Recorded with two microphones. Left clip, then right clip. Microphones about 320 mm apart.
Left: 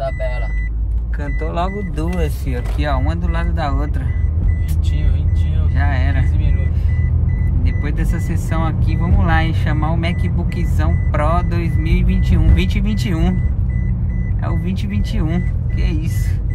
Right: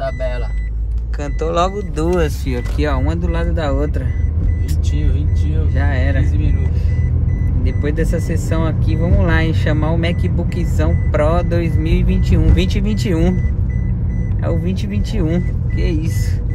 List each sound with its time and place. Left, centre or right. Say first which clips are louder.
2.0 s speech: right 9 dB; right
2.4 s speech: right 3 dB; centre
5.8 s speech: right 1 dB; centre
7.6 s speech: right 8 dB; centre
14.4 s speech: right 4 dB; centre